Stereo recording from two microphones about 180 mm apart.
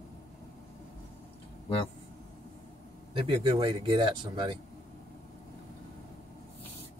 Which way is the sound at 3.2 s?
30° right (ahead or behind).